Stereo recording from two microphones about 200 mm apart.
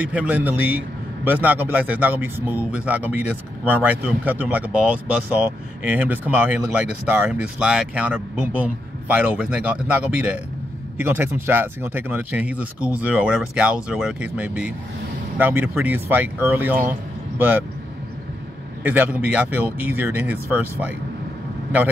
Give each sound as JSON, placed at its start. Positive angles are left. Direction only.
{"t": 0.0, "sound": "speech", "side_deg": -5}
{"t": 18.8, "sound": "speech", "side_deg": -10}